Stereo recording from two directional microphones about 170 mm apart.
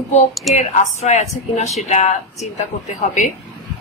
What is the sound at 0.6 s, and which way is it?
A woman's voice, 40° left (ahead or behind).